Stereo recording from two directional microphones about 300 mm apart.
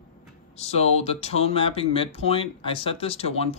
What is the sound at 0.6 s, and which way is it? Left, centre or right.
Speech, left.